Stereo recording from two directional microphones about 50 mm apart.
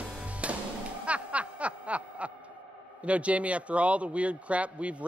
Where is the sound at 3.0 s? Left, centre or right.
Right.